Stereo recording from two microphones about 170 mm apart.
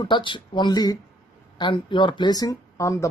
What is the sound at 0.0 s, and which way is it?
Speech, 25° left (ahead or behind).